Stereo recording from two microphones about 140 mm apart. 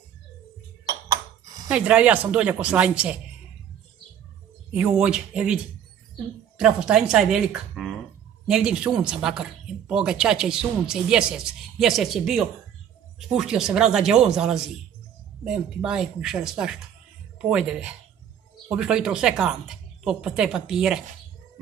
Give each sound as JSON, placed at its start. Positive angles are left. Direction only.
{"t": 0.8, "sound": "ping", "side_deg": -25}
{"t": 1.7, "sound": "speech", "side_deg": -5}
{"t": 4.7, "sound": "speech", "side_deg": -5}
{"t": 6.6, "sound": "speech", "side_deg": -5}